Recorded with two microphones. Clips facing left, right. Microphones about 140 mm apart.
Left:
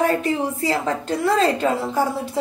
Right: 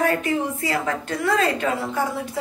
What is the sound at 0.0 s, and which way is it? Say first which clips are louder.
A woman's voice: left 2 dB; 30° left (ahead or behind).